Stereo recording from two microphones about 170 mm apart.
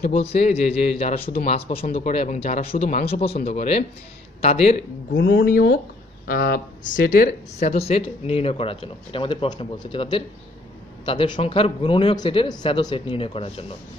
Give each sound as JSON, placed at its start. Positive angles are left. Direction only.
{"t": 0.1, "sound": "speech", "side_deg": 35}
{"t": 5.1, "sound": "speech", "side_deg": 90}